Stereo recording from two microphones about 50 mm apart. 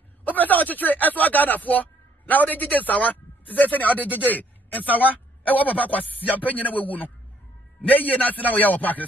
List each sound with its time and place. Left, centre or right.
0.2 s a man's voice: left